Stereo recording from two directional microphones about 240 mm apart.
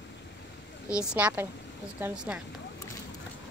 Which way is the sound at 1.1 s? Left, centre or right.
Centre.